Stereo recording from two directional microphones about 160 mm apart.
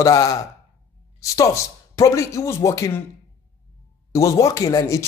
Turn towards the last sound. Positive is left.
turn(degrees=20)  # may be behind; listen again after turning